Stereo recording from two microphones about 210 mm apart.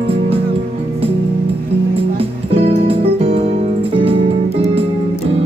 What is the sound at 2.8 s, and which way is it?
Music, 30° right (ahead or behind).